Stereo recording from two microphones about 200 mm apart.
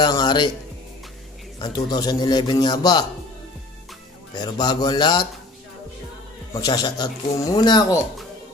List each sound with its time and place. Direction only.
0.0 s a man's voice: 20° left (ahead or behind)
1.6 s a man's voice: 20° left (ahead or behind)
4.3 s a man's voice: 20° left (ahead or behind)
6.5 s a man's voice: 20° left (ahead or behind)